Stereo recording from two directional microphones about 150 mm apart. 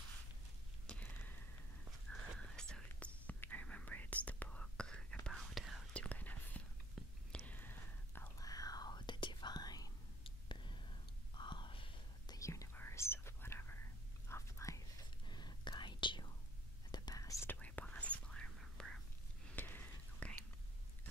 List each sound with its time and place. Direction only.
0.8 s a sound: 10° left (ahead or behind)
2.0 s whispering: 5° left (ahead or behind); by 12.4 s 35° left (ahead or behind)
12.4 s whispering: 20° left (ahead or behind)